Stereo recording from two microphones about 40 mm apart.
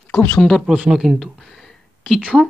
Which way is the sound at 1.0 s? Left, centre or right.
Centre.